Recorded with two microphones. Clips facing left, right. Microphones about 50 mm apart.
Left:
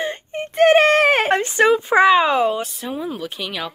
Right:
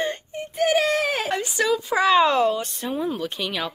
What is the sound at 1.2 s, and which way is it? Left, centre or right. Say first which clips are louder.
Speech: left 7 dB; left.